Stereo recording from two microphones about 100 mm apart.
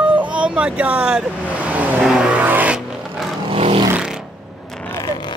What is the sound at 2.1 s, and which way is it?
Vehicle, 15° right (ahead or behind).